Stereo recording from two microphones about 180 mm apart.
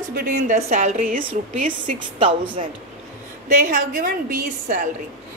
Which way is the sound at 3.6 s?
50° right (ahead or behind).